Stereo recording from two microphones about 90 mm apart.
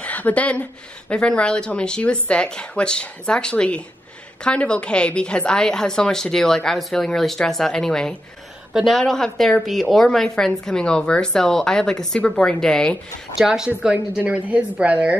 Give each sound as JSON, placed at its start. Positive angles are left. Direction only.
{"t": 0.0, "sound": "a woman's voice", "side_deg": 15}
{"t": 13.4, "sound": "a woman's voice", "side_deg": -10}